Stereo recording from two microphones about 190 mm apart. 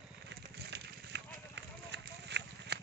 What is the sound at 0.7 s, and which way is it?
Horse, 65° right (ahead or behind).